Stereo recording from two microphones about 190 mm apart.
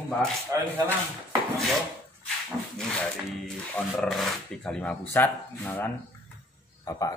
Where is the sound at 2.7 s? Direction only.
5° left (ahead or behind).